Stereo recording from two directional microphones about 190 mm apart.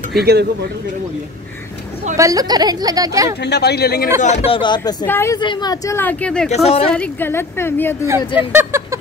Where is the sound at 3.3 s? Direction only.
60° left (ahead or behind).